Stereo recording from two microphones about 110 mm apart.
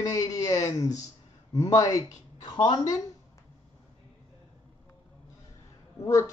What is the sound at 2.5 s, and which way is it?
Speech, 45° left (ahead or behind).